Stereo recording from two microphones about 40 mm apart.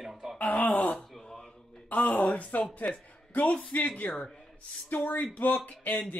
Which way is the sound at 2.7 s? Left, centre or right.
Left.